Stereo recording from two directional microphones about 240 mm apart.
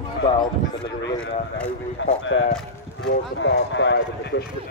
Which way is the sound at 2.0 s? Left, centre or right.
Left.